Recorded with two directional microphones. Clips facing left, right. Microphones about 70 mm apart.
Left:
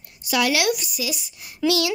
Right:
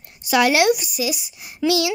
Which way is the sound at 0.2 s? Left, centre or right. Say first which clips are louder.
Right 5 dB; right.